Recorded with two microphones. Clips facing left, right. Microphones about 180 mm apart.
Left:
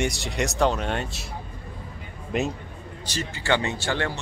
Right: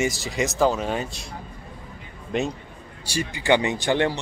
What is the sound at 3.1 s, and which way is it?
Speech, 15° right (ahead or behind).